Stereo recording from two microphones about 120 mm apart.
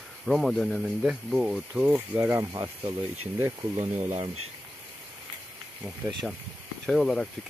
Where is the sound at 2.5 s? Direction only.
30° right (ahead or behind).